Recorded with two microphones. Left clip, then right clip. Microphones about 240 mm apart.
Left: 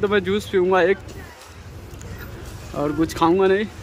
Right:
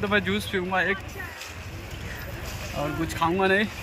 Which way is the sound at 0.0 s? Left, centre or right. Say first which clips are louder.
Left 5 dB; centre.